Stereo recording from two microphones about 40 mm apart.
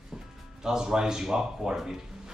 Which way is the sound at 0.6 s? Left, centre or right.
Centre.